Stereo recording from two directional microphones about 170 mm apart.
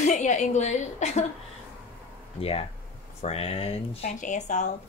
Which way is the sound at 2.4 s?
35° left (ahead or behind).